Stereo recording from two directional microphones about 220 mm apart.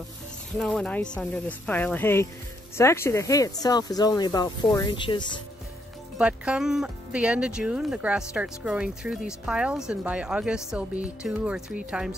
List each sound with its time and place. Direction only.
0.6 s speech: 5° left (ahead or behind); by 5.4 s 20° left (ahead or behind)
6.1 s speech: 5° right (ahead or behind)